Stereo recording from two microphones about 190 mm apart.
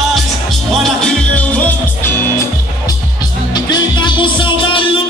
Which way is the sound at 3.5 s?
20° left (ahead or behind).